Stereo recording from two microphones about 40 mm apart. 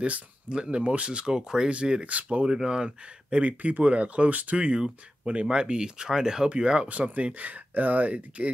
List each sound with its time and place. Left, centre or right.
0.0 s speech: right
2.4 s speech: centre; by 4.6 s right
4.6 s speech: right
6.9 s speech: right